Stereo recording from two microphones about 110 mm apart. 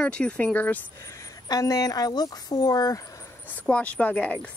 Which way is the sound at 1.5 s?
35° left (ahead or behind).